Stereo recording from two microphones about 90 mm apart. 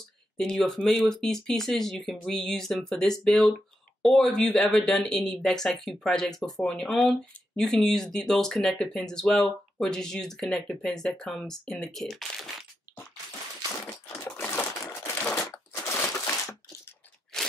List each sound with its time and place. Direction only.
0.4 s speech: 5° left (ahead or behind)
14.3 s a sound: 25° left (ahead or behind)
17.3 s crunch: 5° left (ahead or behind)